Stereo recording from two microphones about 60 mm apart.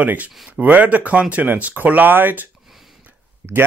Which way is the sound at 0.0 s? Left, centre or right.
Right.